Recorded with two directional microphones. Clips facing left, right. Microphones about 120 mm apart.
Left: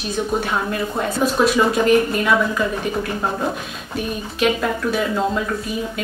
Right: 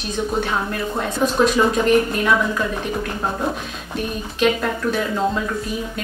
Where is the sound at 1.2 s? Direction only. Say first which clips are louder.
Even; 5° left (ahead or behind).